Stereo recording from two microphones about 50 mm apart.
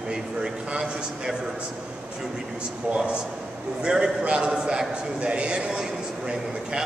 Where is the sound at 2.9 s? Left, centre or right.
Centre.